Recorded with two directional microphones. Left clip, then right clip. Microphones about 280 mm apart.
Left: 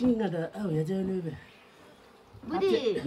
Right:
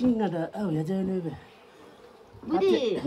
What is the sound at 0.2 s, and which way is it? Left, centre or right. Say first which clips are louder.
A man's voice: right 3 dB; centre.